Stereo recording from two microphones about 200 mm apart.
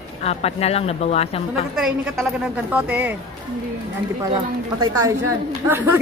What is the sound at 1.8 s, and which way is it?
A woman's voice, centre (ahead or behind).